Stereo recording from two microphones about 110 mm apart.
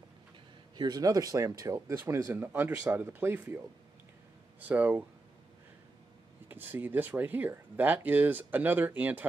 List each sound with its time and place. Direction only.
0.7 s speech: 40° right (ahead or behind); by 5.0 s 15° right (ahead or behind)
6.5 s speech: 20° right (ahead or behind)